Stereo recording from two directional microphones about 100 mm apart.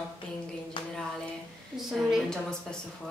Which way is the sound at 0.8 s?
55° left (ahead or behind).